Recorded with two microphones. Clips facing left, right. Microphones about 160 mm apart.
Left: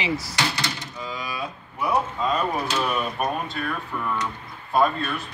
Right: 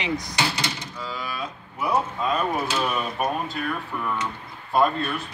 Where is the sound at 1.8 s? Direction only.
5° right (ahead or behind).